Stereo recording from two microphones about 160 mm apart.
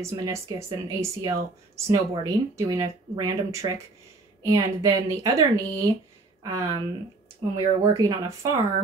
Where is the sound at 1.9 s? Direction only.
20° right (ahead or behind).